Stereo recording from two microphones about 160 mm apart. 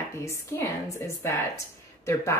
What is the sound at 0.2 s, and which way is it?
Speech, 20° left (ahead or behind).